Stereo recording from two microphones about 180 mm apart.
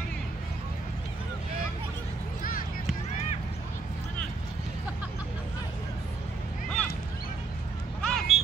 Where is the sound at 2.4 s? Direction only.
50° left (ahead or behind).